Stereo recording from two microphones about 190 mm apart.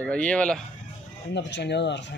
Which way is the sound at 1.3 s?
65° left (ahead or behind).